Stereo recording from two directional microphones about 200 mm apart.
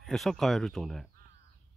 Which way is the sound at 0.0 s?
Centre (ahead or behind).